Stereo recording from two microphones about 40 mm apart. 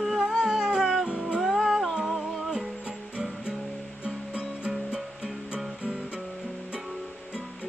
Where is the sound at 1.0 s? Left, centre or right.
Right.